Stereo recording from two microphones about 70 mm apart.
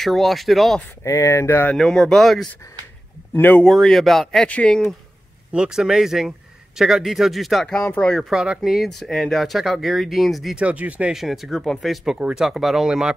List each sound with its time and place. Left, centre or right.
0.0 s speech: centre
1.0 s speech: left
1.8 s speech: centre
3.6 s speech: centre
4.5 s speech: centre
5.5 s speech: centre
10.6 s speech: centre
11.1 s speech: centre